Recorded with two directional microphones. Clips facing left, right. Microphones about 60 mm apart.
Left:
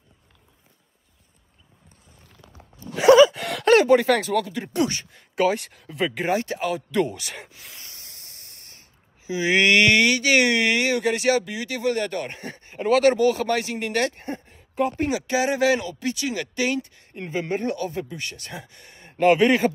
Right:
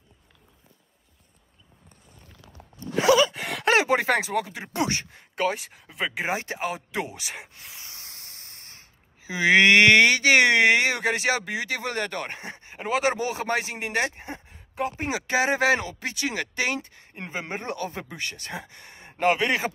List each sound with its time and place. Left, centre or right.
3.0 s gasp: centre
3.9 s speech: right
5.3 s speech: centre
6.3 s speech: right
7.3 s speech: centre
7.9 s speech: right
12.4 s speech: right
14.5 s a sound: centre
15.0 s speech: right
19.2 s speech: centre